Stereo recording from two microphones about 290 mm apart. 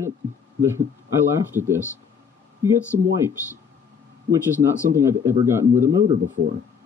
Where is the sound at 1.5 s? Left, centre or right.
Centre.